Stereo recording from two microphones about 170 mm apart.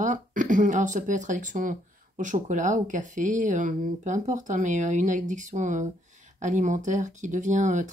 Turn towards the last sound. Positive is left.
turn(degrees=-45)  # may be behind; listen again after turning